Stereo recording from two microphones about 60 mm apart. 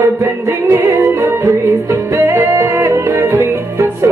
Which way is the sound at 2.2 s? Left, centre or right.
Right.